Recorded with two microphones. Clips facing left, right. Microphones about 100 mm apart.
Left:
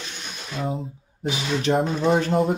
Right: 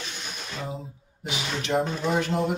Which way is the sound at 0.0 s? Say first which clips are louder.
Even; centre (ahead or behind).